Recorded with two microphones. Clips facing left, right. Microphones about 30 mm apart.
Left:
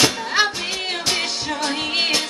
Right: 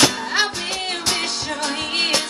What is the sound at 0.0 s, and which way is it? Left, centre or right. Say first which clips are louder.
Music: even; centre.